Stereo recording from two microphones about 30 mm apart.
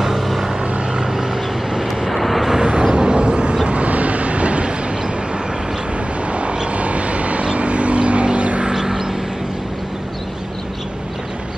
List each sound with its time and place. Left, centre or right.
0.0 s vehicle: centre
2.0 s vehicle: centre
2.6 s vehicle: right
3.6 s vehicle: right
6.2 s vehicle: right
8.6 s a sound: centre